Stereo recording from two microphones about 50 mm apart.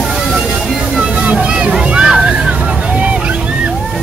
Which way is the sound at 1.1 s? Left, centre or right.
Right.